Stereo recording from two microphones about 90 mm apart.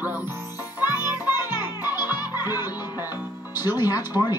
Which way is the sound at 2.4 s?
25° right (ahead or behind).